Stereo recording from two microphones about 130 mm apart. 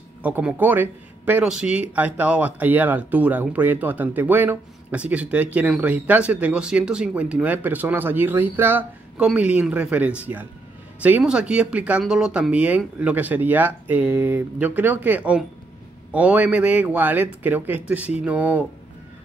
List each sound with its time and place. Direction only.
0.2 s speech: 10° right (ahead or behind)